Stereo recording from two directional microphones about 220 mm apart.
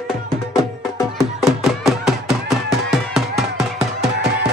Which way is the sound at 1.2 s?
Centre (ahead or behind).